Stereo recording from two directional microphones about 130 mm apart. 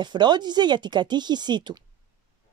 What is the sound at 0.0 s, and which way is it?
A woman's voice, 35° right (ahead or behind).